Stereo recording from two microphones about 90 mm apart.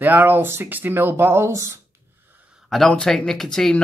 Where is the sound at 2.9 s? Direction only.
10° left (ahead or behind).